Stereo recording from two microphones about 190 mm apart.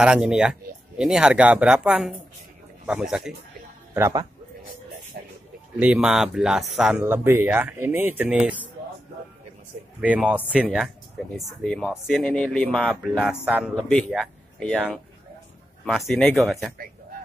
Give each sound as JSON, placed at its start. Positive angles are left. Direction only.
{"t": 0.0, "sound": "speech", "side_deg": -5}
{"t": 3.9, "sound": "a man's voice", "side_deg": -15}
{"t": 5.8, "sound": "speech", "side_deg": -5}
{"t": 9.9, "sound": "speech", "side_deg": -5}
{"t": 15.8, "sound": "speech", "side_deg": 0}